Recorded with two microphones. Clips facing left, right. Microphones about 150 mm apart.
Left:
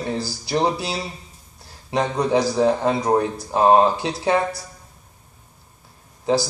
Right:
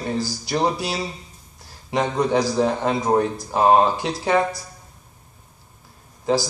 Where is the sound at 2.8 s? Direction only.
Centre (ahead or behind).